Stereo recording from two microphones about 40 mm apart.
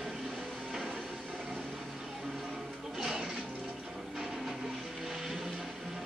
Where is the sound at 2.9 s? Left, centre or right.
Centre.